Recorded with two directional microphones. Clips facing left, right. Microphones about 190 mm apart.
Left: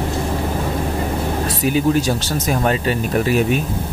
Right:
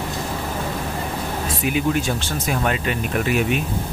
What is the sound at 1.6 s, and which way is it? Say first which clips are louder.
Speech: left 5 dB; 35° left (ahead or behind).